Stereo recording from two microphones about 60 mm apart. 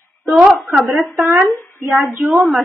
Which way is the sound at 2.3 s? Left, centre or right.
Centre.